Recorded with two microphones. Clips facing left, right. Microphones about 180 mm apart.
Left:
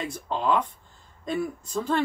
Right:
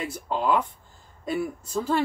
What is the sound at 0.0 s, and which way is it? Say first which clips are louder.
Speech: right 1 dB; 5° right (ahead or behind).